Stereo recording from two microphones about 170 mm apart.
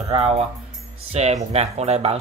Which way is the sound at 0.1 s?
40° right (ahead or behind).